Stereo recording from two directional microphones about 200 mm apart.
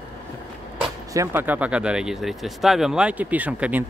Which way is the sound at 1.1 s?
10° right (ahead or behind).